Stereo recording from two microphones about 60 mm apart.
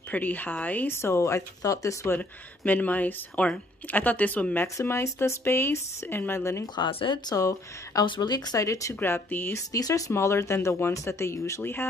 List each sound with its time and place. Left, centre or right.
0.1 s speech: left
0.8 s speech: left
2.0 s speech: left
4.8 s speech: left
7.3 s speech: left
9.0 s speech: left
9.7 s speech: left
10.1 s speech: left
11.6 s speech: left